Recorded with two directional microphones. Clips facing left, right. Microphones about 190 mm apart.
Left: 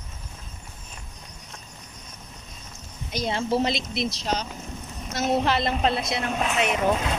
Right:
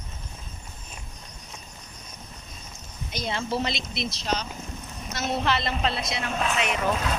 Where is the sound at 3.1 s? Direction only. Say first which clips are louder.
Left 4 dB; 35° left (ahead or behind); by 6.2 s 55° left (ahead or behind).